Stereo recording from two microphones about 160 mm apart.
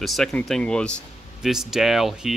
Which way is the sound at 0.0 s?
Centre (ahead or behind).